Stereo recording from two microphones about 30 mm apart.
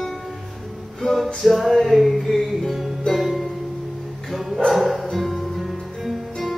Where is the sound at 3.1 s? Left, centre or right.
Left.